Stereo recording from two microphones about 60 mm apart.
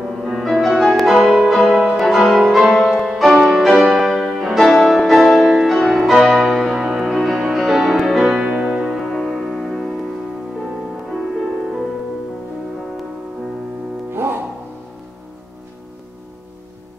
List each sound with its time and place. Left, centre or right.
0.2 s music: centre
9.0 s music: centre
11.1 s music: centre
14.1 s music: right